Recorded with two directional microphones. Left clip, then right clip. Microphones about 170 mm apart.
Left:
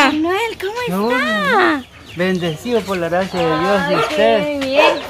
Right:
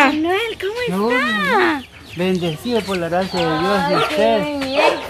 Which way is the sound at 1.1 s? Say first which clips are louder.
Left 2 dB; 55° left (ahead or behind).